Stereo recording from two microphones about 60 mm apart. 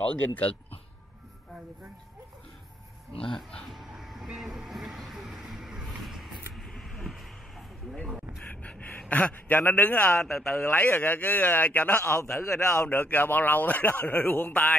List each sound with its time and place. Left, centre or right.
0.0 s a man's voice: left
3.3 s speech: centre
3.7 s vehicle: centre
8.5 s gasp: left
9.6 s a man's voice: left
12.4 s a man's voice: left
12.8 s speech: left